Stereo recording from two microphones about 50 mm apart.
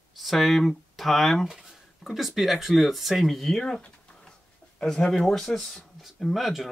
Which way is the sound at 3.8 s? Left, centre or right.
Centre.